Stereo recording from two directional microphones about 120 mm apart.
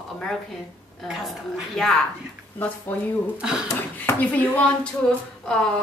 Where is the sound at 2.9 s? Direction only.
15° left (ahead or behind).